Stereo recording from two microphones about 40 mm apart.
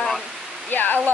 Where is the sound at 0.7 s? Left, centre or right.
Left.